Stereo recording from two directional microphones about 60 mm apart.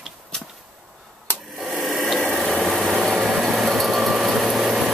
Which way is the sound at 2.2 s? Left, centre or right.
Centre.